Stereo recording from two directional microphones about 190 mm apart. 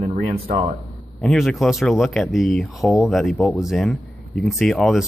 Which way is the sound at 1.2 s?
Centre (ahead or behind).